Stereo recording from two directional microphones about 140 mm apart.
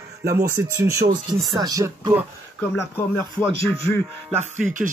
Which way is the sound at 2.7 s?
15° left (ahead or behind).